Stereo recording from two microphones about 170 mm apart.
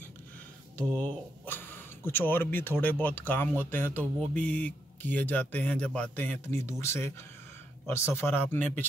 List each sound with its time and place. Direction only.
0.7 s speech: 10° left (ahead or behind)